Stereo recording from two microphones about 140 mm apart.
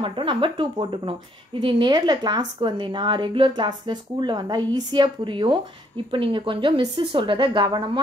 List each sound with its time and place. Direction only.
0.0 s speech: 35° right (ahead or behind)